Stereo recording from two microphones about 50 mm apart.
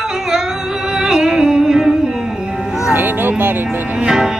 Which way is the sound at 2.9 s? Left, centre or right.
Right.